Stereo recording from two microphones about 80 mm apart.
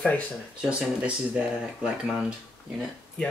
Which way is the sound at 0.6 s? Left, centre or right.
Centre.